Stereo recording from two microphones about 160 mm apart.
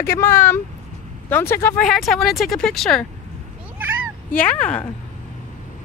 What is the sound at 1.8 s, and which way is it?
A woman's voice, centre (ahead or behind).